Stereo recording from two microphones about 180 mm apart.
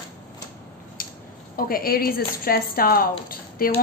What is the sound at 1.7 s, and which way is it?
A woman's voice, 55° left (ahead or behind).